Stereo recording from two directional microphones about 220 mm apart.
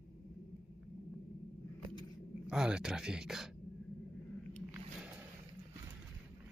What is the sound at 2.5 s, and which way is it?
Speech, 5° right (ahead or behind).